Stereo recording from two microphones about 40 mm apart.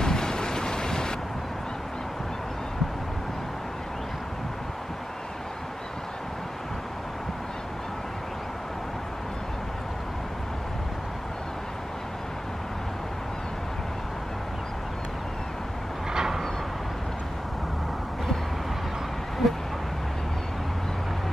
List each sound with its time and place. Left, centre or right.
0.0 s vehicle: centre
16.1 s vehicle: centre
19.4 s a sound: centre